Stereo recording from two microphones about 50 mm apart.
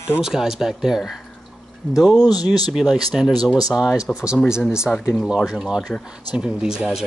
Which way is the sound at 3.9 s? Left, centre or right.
Centre.